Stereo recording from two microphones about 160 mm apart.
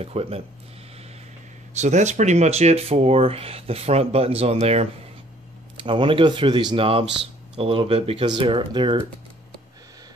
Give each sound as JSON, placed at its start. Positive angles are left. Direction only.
{"t": 0.0, "sound": "speech", "side_deg": -40}
{"t": 1.7, "sound": "speech", "side_deg": -45}